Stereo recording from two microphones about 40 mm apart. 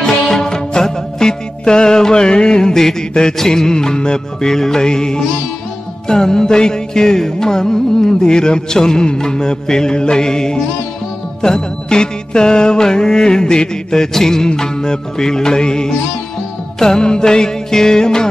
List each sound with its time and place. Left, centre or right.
0.0 s music: centre